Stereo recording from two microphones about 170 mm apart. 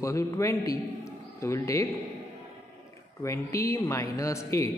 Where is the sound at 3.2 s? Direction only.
15° left (ahead or behind).